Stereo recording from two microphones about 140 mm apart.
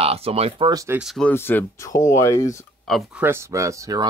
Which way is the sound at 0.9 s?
Centre (ahead or behind).